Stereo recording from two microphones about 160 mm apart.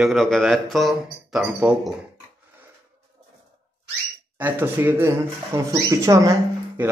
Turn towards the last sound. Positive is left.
turn(degrees=-20)  # may be behind; listen again after turning